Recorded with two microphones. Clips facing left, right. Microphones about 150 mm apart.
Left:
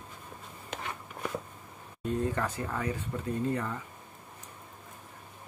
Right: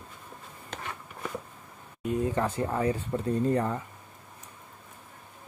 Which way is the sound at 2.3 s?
30° right (ahead or behind).